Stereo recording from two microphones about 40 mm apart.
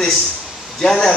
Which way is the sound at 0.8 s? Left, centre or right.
Centre.